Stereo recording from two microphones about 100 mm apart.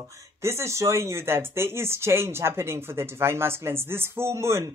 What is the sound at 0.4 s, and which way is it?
Speech, 25° right (ahead or behind).